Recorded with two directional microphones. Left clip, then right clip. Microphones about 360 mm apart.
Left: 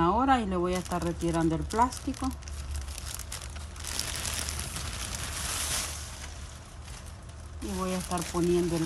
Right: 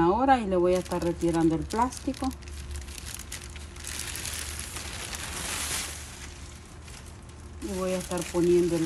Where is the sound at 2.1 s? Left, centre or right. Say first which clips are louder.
Right 2 dB; centre.